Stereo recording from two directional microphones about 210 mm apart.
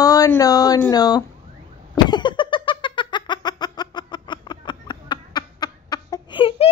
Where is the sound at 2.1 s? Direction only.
20° left (ahead or behind).